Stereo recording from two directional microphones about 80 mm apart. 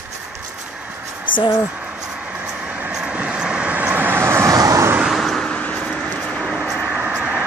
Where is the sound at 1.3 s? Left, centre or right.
Left.